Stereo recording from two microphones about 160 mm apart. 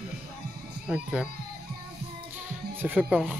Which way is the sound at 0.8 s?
5° right (ahead or behind).